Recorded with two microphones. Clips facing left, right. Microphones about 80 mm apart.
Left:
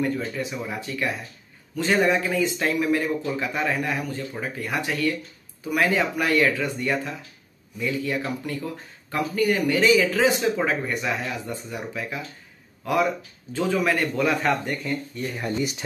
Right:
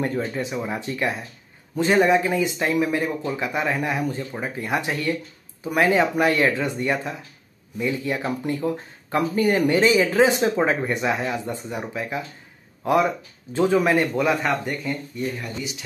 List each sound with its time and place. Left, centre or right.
0.0 s speech: right
14.1 s speech: centre